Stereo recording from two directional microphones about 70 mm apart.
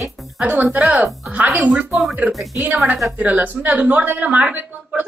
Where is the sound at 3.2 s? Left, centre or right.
Right.